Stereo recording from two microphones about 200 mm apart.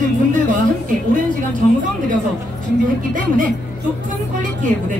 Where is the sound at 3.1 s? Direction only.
40° right (ahead or behind).